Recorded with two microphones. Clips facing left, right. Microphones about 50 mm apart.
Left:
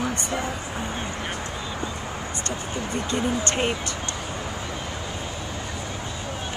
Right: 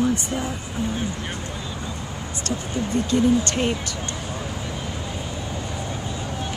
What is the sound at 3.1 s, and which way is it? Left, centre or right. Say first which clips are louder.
Speech: right 6 dB; centre.